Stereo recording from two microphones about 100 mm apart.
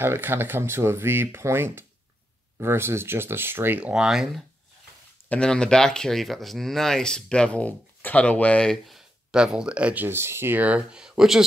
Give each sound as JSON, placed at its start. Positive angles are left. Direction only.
{"t": 0.0, "sound": "speech", "side_deg": -25}
{"t": 3.9, "sound": "speech", "side_deg": -5}
{"t": 5.3, "sound": "speech", "side_deg": 10}
{"t": 8.9, "sound": "speech", "side_deg": -5}
{"t": 10.0, "sound": "speech", "side_deg": -25}